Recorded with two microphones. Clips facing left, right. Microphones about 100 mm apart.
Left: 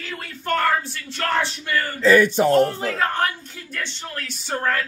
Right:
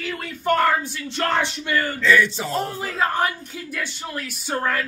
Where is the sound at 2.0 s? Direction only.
45° left (ahead or behind).